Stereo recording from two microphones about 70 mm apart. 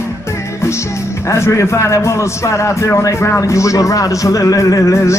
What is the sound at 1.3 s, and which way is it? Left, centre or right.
A man's voice, left.